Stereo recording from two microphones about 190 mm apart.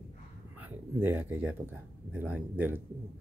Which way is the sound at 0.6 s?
10° right (ahead or behind).